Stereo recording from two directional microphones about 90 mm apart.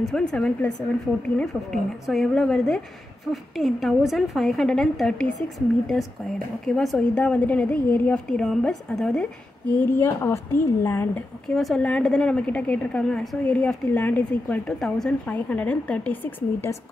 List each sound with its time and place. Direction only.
0.0 s a woman's voice: 10° left (ahead or behind)
1.4 s a woman's voice: 5° left (ahead or behind)
6.6 s a woman's voice: centre (ahead or behind); by 11.2 s 25° left (ahead or behind)
11.4 s a woman's voice: 5° left (ahead or behind)
13.5 s a woman's voice: 15° left (ahead or behind)